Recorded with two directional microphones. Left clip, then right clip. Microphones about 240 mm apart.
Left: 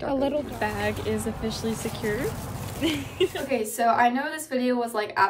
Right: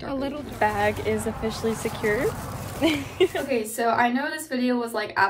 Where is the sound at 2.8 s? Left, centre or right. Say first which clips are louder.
Right 4 dB; centre.